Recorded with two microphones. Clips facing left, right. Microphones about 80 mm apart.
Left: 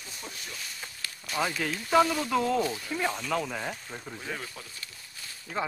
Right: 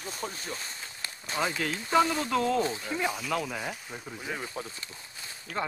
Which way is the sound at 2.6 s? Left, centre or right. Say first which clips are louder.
Even; right.